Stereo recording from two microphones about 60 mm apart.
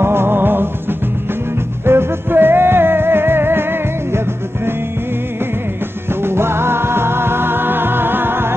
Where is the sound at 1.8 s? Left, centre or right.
Right.